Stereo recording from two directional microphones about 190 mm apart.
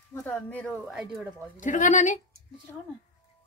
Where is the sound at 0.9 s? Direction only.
5° right (ahead or behind).